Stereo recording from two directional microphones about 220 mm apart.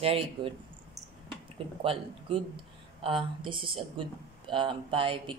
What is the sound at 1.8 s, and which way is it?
Speech, 25° right (ahead or behind).